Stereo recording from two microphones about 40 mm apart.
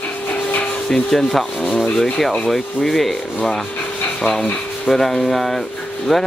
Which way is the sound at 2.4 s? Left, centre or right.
Centre.